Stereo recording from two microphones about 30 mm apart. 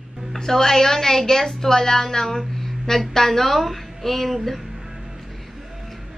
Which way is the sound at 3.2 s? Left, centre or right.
Centre.